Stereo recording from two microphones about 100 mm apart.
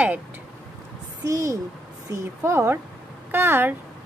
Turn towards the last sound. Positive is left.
turn(degrees=-20)  # may be behind; listen again after turning